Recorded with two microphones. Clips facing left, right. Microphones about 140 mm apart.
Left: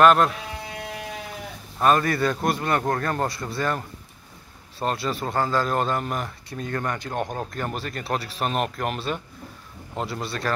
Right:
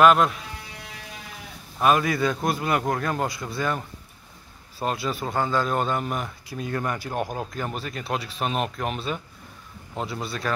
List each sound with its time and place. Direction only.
0.0 s a man's voice: 5° right (ahead or behind)
1.8 s a man's voice: 5° right (ahead or behind)